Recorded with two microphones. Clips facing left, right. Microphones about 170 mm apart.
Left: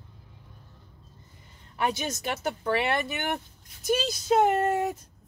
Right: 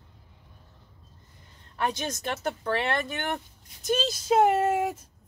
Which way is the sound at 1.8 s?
5° left (ahead or behind).